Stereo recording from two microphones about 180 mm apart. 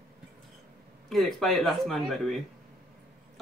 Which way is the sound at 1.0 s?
Centre (ahead or behind).